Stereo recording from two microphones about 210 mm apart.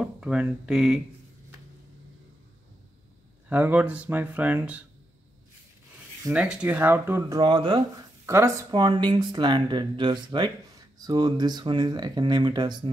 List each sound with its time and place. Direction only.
0.0 s speech: 5° right (ahead or behind)
3.4 s speech: 10° right (ahead or behind)
6.2 s speech: 5° right (ahead or behind); by 12.9 s 20° right (ahead or behind)